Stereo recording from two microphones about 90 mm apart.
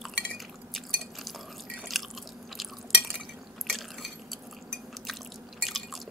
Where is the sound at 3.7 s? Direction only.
Centre (ahead or behind).